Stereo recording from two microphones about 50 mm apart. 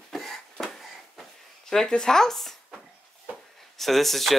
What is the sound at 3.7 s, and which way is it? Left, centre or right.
Speech, centre.